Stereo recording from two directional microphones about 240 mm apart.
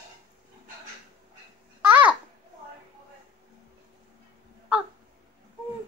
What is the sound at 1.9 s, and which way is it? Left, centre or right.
Babbling, centre.